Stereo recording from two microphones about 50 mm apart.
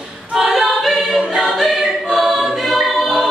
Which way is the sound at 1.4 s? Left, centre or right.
Centre.